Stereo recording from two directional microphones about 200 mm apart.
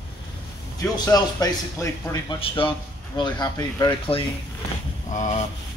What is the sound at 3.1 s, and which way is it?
Speech, 20° left (ahead or behind).